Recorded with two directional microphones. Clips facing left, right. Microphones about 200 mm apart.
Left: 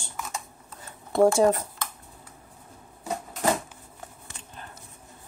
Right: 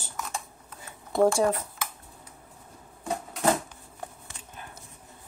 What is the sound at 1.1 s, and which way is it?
Speech, centre (ahead or behind).